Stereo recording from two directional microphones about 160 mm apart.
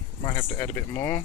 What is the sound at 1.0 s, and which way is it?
Speech, 15° left (ahead or behind).